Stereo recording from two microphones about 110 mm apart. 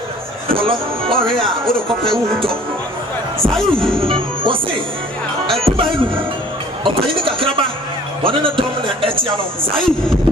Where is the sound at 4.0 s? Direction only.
55° right (ahead or behind).